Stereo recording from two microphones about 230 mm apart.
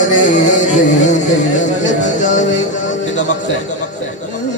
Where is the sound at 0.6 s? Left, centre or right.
Left.